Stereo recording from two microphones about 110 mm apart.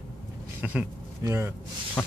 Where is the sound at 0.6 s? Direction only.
15° right (ahead or behind).